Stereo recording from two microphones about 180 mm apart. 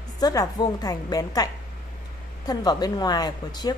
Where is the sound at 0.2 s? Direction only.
20° left (ahead or behind).